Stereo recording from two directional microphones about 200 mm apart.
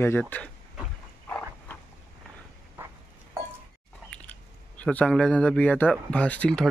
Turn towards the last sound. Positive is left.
turn(degrees=5)  # may be behind; listen again after turning